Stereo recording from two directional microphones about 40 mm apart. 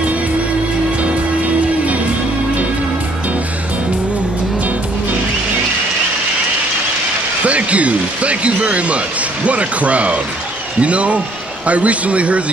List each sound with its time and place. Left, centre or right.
7.4 s speech: right